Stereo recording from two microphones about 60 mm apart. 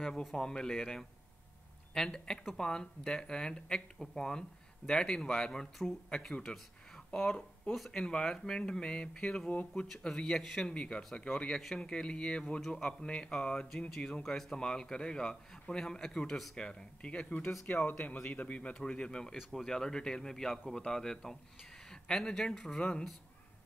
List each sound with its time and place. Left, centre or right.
0.0 s a man's voice: centre
10.7 s a man's voice: centre
16.5 s a man's voice: centre